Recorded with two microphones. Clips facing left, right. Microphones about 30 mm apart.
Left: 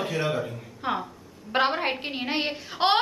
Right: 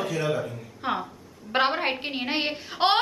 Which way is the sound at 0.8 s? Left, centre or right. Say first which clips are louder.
Even; centre.